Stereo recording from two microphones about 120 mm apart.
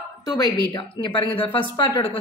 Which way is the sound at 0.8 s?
45° left (ahead or behind).